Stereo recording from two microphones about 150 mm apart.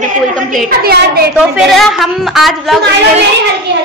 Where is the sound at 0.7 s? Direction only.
90° right.